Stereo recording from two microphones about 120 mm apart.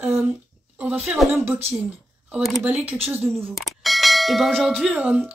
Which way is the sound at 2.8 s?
15° right (ahead or behind).